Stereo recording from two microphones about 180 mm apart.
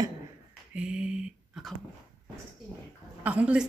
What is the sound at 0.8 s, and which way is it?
Speech, 5° right (ahead or behind).